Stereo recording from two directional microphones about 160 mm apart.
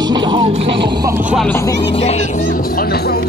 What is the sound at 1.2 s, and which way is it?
Music, 10° right (ahead or behind).